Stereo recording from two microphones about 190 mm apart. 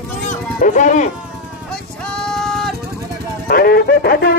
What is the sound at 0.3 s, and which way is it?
Livestock, 40° left (ahead or behind).